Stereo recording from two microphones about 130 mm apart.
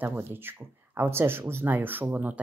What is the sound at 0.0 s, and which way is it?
Speech, 15° right (ahead or behind).